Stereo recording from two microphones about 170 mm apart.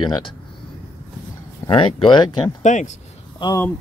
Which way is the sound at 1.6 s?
30° left (ahead or behind).